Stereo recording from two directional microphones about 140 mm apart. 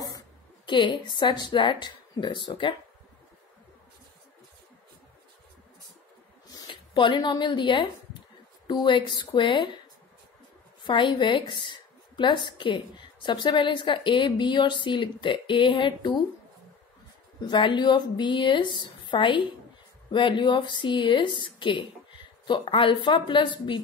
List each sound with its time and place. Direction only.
0.7 s a woman's voice: 35° left (ahead or behind)
6.5 s a woman's voice: 35° left (ahead or behind)
10.8 s a woman's voice: 35° left (ahead or behind)
17.5 s a woman's voice: 35° left (ahead or behind)